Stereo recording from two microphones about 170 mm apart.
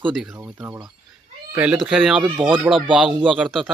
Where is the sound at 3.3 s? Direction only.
Centre (ahead or behind).